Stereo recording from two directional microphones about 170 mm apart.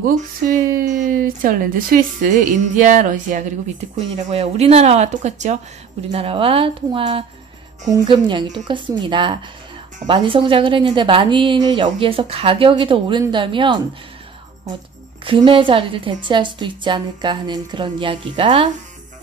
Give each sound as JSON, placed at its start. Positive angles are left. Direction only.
{"t": 0.4, "sound": "a woman's voice", "side_deg": -55}
{"t": 15.2, "sound": "a woman's voice", "side_deg": -30}